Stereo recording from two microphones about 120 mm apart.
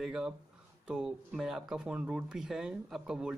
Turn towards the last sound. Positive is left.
turn(degrees=-5)  # may be behind; listen again after turning